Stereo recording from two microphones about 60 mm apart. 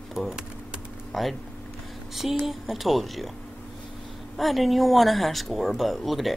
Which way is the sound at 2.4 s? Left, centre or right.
Centre.